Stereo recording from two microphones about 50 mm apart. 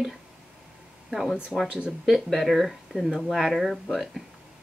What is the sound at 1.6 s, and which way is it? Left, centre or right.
Speech, right.